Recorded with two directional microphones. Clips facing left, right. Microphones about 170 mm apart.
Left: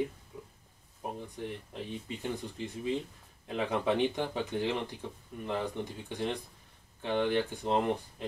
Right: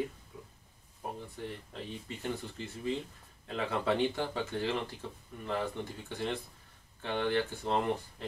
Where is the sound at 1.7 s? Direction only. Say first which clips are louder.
Left 3 dB; 15° left (ahead or behind).